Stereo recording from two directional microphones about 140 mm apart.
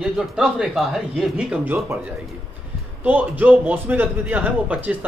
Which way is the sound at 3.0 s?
15° right (ahead or behind).